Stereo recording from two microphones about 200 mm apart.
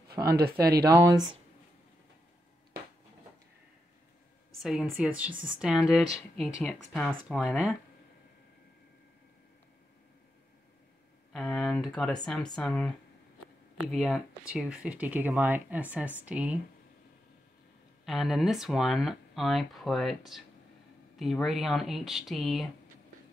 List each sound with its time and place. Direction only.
0.3 s speech: 50° right (ahead or behind)
0.8 s speech: 15° right (ahead or behind)
4.6 s speech: 5° right (ahead or behind)
11.3 s speech: centre (ahead or behind)
18.0 s speech: centre (ahead or behind)